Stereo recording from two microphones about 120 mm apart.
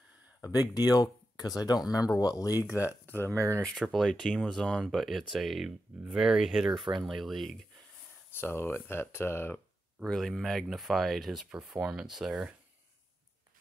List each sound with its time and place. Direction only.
0.4 s speech: 30° left (ahead or behind)
3.3 s speech: 25° right (ahead or behind)
3.6 s speech: centre (ahead or behind)
8.3 s speech: 20° left (ahead or behind)
10.0 s speech: 5° left (ahead or behind)